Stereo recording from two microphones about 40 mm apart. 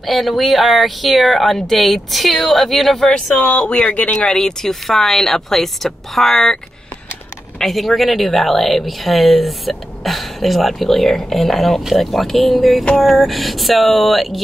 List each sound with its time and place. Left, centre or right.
0.0 s a woman's voice: centre
3.3 s speech: left
4.3 s speech: centre
7.6 s a woman's voice: centre